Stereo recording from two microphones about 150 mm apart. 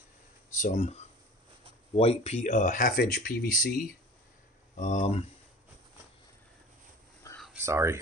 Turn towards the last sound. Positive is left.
turn(degrees=-20)  # may be behind; listen again after turning